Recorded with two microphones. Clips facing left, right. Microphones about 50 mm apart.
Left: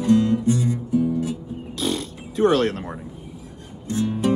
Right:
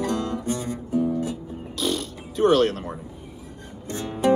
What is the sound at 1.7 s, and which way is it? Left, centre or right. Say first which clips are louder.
Fart: left 1 dB; left.